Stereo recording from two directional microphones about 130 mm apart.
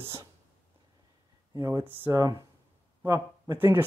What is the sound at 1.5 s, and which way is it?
Speech, 25° right (ahead or behind).